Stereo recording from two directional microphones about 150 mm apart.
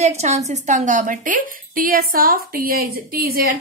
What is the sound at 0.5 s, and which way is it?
A woman's voice, 55° right (ahead or behind).